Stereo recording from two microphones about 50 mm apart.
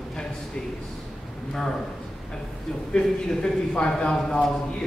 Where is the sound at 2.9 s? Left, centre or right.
Centre.